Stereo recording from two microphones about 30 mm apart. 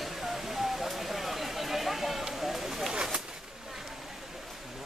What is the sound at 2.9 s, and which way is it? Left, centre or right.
Bird, right.